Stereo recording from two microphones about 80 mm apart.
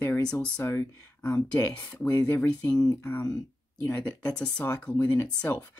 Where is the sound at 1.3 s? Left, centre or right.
Centre.